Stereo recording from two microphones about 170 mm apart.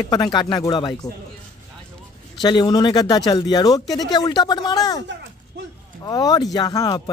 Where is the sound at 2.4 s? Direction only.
25° left (ahead or behind).